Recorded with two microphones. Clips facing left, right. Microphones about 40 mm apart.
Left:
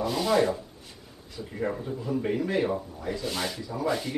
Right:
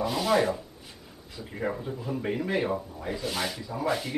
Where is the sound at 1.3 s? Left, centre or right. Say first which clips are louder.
Left 1 dB; centre.